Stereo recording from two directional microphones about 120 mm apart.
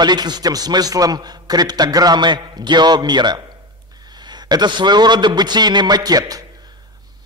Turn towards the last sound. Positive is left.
turn(degrees=-30)  # may be behind; listen again after turning